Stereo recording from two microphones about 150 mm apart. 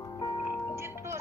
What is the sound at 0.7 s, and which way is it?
Music, 15° right (ahead or behind).